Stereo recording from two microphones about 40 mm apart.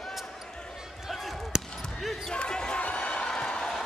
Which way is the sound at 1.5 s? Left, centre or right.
Centre.